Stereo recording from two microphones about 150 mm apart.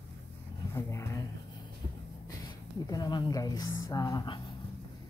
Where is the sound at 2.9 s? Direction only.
30° left (ahead or behind).